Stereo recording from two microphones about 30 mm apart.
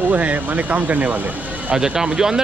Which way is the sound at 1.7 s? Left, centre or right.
Right.